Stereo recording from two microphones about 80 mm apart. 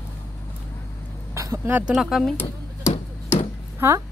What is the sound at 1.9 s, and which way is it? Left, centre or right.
Speech, centre.